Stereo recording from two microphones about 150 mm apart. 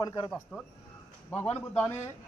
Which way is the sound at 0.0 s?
25° left (ahead or behind).